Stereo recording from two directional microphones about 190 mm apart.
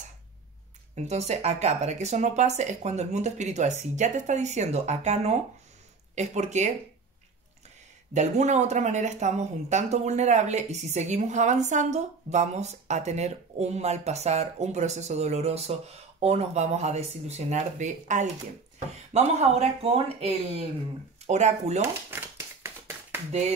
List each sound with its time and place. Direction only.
0.9 s speech: 35° right (ahead or behind)
8.1 s speech: 40° right (ahead or behind)
22.1 s a sound: 10° right (ahead or behind)